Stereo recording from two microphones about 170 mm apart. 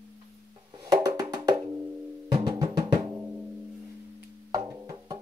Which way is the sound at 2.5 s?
25° right (ahead or behind).